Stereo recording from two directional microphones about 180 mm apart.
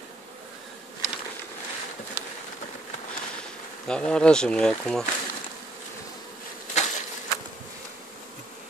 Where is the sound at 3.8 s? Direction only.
5° left (ahead or behind).